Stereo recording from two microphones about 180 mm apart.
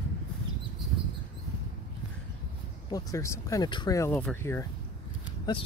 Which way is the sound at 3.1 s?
15° left (ahead or behind).